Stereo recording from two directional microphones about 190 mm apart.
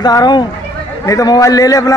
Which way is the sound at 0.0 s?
20° left (ahead or behind).